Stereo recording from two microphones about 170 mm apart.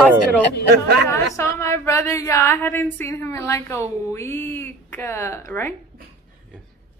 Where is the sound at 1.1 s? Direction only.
15° left (ahead or behind).